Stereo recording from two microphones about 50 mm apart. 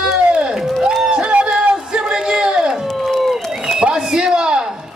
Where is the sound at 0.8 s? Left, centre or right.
Right.